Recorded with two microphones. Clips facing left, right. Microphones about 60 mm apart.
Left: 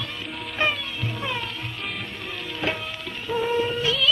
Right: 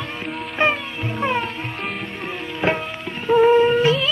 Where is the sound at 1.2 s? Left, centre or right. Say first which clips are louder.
Right 10 dB; right.